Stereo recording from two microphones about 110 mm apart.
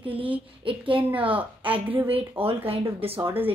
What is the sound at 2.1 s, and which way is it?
Speech, 60° right (ahead or behind).